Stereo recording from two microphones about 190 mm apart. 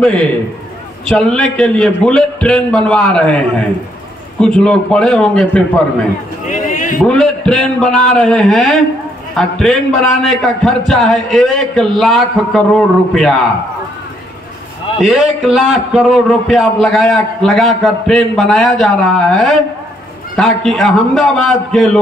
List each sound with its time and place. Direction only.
0.0 s a man's voice: 5° left (ahead or behind)
6.4 s a sound: 40° left (ahead or behind)
7.0 s a man's voice: centre (ahead or behind)
15.0 s a man's voice: centre (ahead or behind)